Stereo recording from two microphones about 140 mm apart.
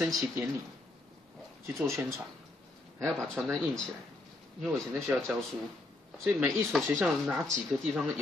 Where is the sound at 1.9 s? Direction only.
20° right (ahead or behind).